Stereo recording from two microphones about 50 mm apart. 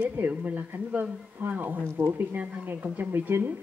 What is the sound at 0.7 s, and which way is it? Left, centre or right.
Speech, right.